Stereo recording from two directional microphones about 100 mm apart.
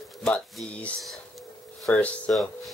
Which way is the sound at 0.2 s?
5° left (ahead or behind).